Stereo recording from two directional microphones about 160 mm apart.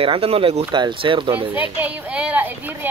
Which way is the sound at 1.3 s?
10° right (ahead or behind).